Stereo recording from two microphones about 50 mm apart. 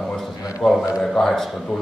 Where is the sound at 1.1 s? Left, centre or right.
Centre.